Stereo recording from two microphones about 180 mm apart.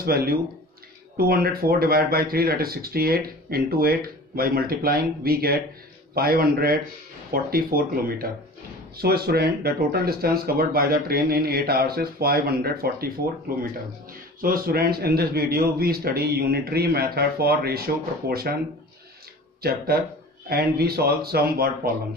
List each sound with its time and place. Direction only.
0.0 s speech: 55° right (ahead or behind)
20.4 s speech: 60° right (ahead or behind)